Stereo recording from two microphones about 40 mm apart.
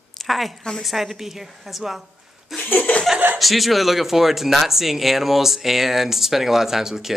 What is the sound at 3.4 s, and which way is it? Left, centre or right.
Speech, centre.